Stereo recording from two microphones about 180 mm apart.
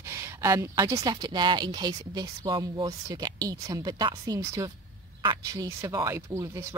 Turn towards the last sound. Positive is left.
turn(degrees=-15)  # may be behind; listen again after turning